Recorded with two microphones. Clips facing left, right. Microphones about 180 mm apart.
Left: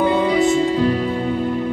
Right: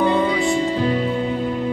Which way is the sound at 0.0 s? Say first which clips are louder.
Left 2 dB; centre (ahead or behind).